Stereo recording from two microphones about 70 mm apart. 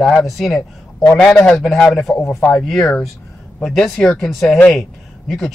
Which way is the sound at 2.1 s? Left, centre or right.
Left.